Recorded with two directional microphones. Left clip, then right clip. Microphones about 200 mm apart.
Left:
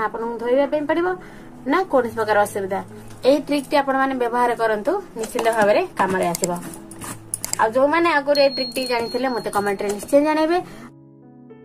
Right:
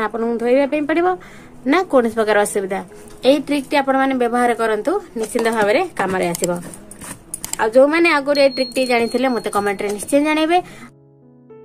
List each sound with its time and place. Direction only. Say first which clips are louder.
0.0 s a woman's voice: right 4 dB; 50° right (ahead or behind)
7.0 s a sound: even; centre (ahead or behind)
7.6 s a woman's voice: right 4 dB; 50° right (ahead or behind)